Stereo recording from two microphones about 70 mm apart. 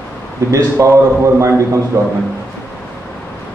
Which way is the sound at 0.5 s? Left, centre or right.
Right.